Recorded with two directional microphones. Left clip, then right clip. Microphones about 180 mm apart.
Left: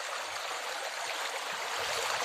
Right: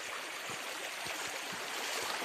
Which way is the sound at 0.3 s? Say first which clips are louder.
Left 5 dB; 35° right (ahead or behind).